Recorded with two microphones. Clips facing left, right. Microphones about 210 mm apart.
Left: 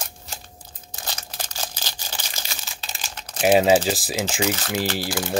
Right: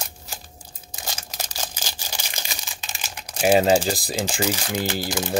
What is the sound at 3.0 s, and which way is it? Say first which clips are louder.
Crumpling: even; 10° right (ahead or behind).